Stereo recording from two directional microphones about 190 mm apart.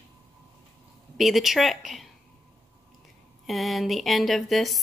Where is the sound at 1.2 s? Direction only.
Centre (ahead or behind).